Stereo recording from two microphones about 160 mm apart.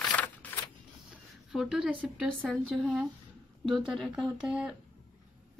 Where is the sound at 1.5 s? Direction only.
5° right (ahead or behind).